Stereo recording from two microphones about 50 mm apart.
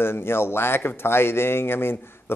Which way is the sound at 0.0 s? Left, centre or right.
Left.